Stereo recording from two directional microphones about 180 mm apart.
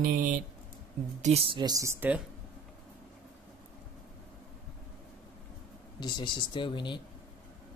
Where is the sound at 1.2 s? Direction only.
35° right (ahead or behind); by 2.2 s 10° right (ahead or behind).